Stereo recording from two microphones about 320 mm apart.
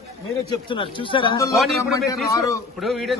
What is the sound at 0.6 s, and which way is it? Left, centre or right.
Speech, centre.